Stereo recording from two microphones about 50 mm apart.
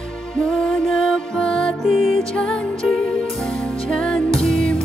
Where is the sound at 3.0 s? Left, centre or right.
Centre.